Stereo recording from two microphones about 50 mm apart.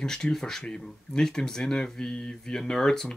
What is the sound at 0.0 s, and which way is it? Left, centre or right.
Speech, centre.